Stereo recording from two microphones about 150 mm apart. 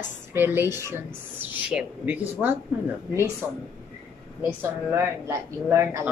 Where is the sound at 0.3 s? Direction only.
15° right (ahead or behind).